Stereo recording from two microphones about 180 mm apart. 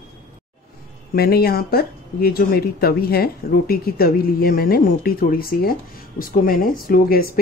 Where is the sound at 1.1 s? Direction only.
60° left (ahead or behind).